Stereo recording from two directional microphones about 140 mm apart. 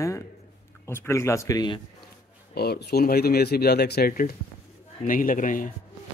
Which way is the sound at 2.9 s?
90° left.